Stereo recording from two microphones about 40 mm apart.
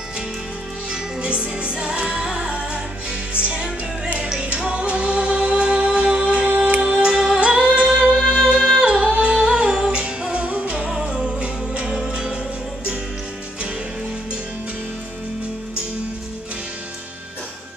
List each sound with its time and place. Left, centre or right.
0.8 s music: right
11.9 s music: centre